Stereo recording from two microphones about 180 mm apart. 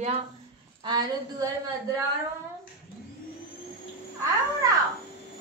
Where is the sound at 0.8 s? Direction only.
20° right (ahead or behind).